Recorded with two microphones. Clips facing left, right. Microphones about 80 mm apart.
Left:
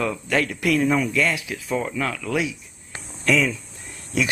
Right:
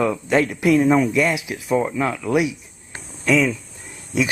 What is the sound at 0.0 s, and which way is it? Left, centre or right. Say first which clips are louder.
Speech: right 5 dB; centre.